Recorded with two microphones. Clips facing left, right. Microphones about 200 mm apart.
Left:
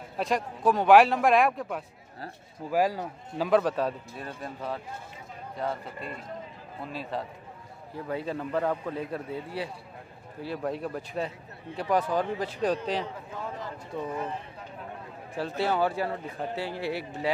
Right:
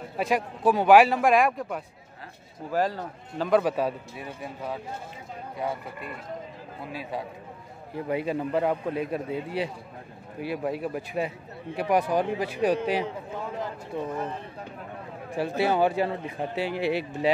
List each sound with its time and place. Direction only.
0.2 s a man's voice: 5° right (ahead or behind)
3.6 s a man's voice: 10° right (ahead or behind)
6.9 s a man's voice: 10° right (ahead or behind)
15.3 s a man's voice: 10° right (ahead or behind)